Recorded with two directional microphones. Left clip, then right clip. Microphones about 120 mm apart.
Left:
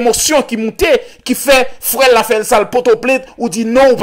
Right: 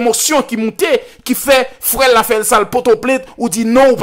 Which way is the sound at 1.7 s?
10° right (ahead or behind).